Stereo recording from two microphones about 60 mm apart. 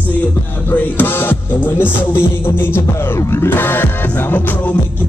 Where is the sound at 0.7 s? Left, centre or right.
Left.